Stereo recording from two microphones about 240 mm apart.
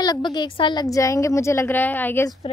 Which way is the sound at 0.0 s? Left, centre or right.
Centre.